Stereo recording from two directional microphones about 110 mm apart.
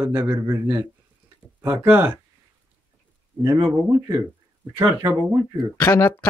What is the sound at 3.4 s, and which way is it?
A man's voice, 25° right (ahead or behind).